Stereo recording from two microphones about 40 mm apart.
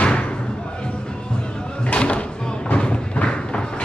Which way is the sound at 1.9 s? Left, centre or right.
Left.